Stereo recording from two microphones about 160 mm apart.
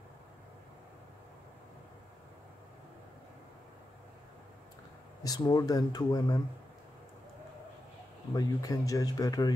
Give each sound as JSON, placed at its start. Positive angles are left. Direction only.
{"t": 5.2, "sound": "speech", "side_deg": 25}
{"t": 8.3, "sound": "speech", "side_deg": 20}